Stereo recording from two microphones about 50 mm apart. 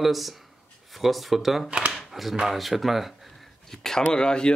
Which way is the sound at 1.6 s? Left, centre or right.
Right.